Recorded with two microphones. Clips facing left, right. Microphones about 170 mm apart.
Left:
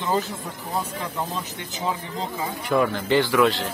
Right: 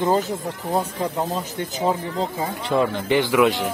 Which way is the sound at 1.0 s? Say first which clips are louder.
Right 5 dB; 45° right (ahead or behind).